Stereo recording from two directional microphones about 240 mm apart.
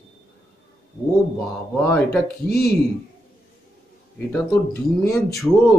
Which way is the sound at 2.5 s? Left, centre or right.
Left.